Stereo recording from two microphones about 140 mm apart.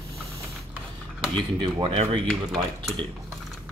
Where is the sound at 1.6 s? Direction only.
40° right (ahead or behind).